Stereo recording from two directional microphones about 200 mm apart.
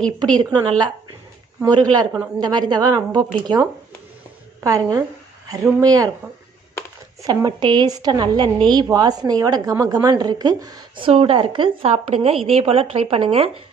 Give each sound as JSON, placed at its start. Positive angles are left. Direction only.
{"t": 0.4, "sound": "a woman's voice", "side_deg": -20}
{"t": 4.6, "sound": "a woman's voice", "side_deg": -15}
{"t": 7.2, "sound": "a woman's voice", "side_deg": -20}